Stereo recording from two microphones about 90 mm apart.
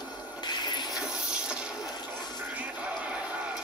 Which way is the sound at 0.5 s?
55° left (ahead or behind).